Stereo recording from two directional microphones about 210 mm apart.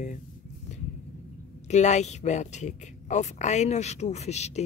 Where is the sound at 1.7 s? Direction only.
35° left (ahead or behind).